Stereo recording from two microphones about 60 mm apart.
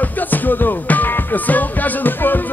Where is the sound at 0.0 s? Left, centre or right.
Left.